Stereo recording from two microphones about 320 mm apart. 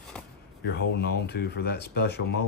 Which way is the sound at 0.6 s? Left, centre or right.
Left.